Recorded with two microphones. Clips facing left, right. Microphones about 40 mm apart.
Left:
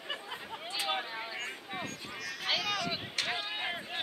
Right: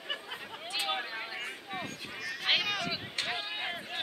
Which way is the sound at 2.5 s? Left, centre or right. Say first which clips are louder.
Right 4 dB; right.